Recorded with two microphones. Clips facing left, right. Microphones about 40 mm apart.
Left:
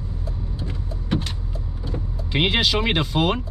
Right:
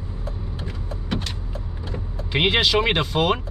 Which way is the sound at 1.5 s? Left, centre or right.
Right.